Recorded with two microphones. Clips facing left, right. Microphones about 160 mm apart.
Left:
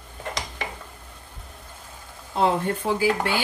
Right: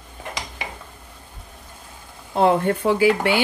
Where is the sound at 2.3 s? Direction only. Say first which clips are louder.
Right 5 dB; 60° right (ahead or behind).